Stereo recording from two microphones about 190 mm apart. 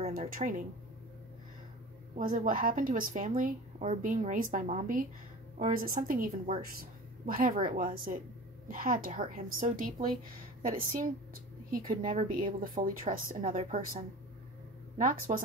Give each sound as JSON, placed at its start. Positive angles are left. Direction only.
{"t": 0.0, "sound": "speech", "side_deg": -40}
{"t": 2.1, "sound": "a woman's voice", "side_deg": -45}